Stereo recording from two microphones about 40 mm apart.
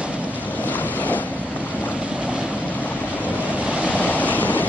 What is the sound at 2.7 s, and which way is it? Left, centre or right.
Waves, left.